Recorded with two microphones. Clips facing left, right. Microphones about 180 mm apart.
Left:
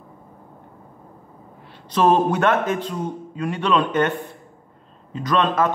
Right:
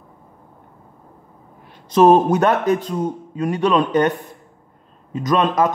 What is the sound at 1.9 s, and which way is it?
A man's voice, 45° right (ahead or behind).